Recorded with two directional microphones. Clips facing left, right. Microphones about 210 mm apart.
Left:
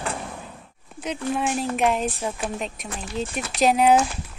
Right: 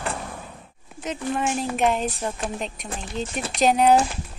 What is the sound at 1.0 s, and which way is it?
Speech, centre (ahead or behind).